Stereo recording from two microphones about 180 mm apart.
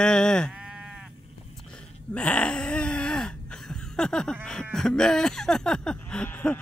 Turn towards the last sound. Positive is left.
turn(degrees=10)  # may be behind; listen again after turning